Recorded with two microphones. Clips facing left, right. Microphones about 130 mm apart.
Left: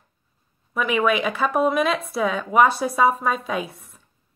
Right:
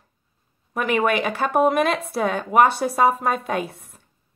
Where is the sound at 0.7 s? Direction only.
65° right (ahead or behind).